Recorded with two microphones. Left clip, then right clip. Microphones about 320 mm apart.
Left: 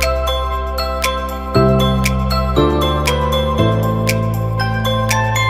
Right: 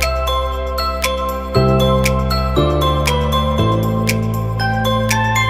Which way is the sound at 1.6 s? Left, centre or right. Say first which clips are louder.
Even; centre.